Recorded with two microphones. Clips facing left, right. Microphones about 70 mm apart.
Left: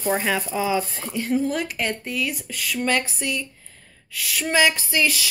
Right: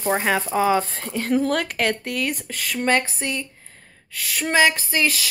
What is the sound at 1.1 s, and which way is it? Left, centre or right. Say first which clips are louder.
Speech: right 2 dB; right.